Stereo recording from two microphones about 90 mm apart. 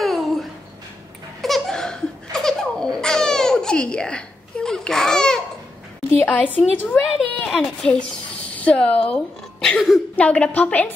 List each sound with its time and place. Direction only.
0.0 s a sound: centre (ahead or behind)
1.4 s laughter: centre (ahead or behind)
6.1 s a woman's voice: 15° left (ahead or behind)
7.2 s a woman's voice: 5° left (ahead or behind)
10.1 s a woman's voice: 15° left (ahead or behind)